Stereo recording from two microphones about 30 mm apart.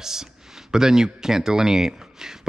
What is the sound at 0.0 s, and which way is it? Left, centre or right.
Speech, centre.